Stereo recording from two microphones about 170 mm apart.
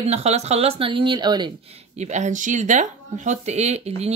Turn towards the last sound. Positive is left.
turn(degrees=-40)  # may be behind; listen again after turning